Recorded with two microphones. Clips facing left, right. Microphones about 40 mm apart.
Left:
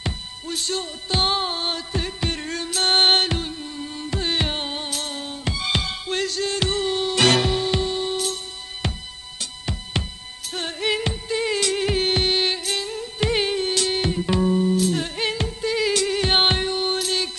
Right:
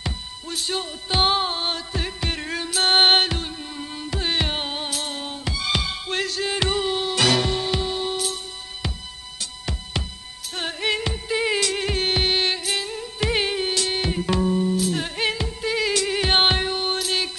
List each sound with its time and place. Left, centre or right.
0.5 s music: centre
3.5 s music: centre
4.1 s music: centre
5.5 s music: centre
5.8 s music: centre
7.3 s music: centre
7.8 s music: centre
10.5 s music: centre
11.2 s music: centre